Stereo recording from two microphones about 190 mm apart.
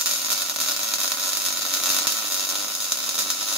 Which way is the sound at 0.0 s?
5° right (ahead or behind).